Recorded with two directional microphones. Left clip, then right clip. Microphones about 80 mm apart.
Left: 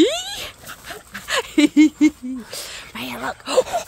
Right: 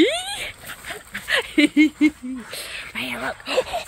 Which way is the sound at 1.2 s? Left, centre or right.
Left.